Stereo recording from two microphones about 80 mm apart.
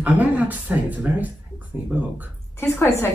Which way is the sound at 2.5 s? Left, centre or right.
Left.